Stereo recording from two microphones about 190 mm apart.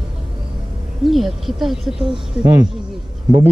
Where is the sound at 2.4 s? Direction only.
20° right (ahead or behind).